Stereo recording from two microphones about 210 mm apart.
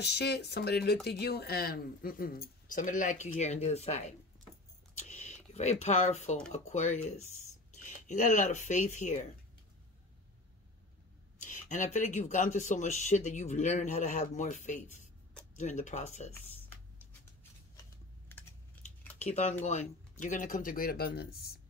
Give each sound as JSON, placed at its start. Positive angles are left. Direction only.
{"t": 0.0, "sound": "speech", "side_deg": 50}
{"t": 4.9, "sound": "a sound", "side_deg": 35}
{"t": 6.5, "sound": "speech", "side_deg": 35}
{"t": 11.3, "sound": "speech", "side_deg": 35}
{"t": 18.3, "sound": "typing", "side_deg": 10}
{"t": 19.1, "sound": "speech", "side_deg": 30}